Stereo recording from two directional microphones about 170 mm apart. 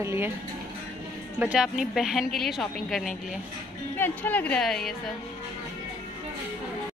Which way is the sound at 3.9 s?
10° left (ahead or behind).